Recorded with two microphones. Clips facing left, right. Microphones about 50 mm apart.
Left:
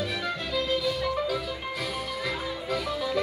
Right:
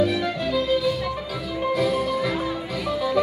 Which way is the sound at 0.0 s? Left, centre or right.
Centre.